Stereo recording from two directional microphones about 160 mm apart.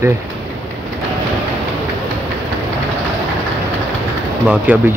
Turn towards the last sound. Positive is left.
turn(degrees=-10)  # may be behind; listen again after turning